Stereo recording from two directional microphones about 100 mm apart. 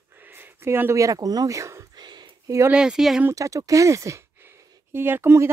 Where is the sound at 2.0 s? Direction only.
45° right (ahead or behind).